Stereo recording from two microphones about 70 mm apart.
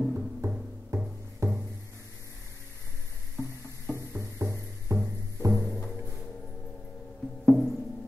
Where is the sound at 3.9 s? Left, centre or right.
Right.